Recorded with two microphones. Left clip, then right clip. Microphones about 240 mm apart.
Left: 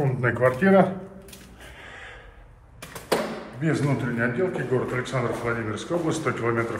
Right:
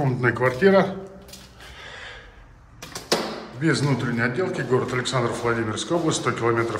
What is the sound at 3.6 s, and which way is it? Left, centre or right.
A man's voice, centre.